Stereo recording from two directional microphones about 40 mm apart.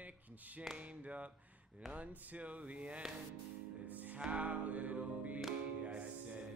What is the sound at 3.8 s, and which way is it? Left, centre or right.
Music, right.